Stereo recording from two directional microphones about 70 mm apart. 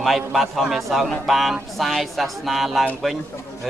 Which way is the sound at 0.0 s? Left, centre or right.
Centre.